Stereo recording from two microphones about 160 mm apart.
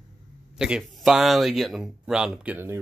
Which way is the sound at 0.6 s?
5° right (ahead or behind).